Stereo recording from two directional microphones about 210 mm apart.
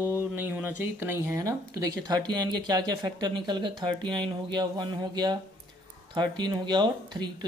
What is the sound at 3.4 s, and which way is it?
Speech, 20° right (ahead or behind).